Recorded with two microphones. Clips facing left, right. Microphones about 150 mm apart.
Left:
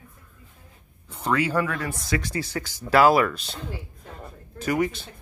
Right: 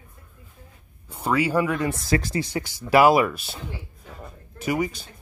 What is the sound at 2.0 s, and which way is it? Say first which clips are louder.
Speech: right 2 dB; 35° right (ahead or behind).